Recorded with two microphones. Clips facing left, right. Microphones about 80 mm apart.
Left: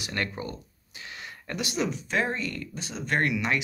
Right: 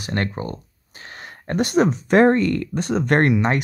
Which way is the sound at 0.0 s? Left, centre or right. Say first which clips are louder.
Right 7 dB; right.